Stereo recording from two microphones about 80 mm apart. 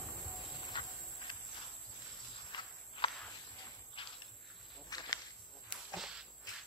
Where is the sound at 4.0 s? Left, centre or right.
Left.